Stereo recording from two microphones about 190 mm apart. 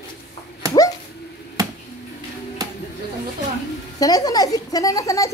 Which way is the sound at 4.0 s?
20° left (ahead or behind).